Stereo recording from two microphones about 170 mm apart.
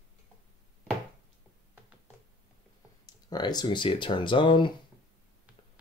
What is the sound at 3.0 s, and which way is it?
Speech, 25° left (ahead or behind).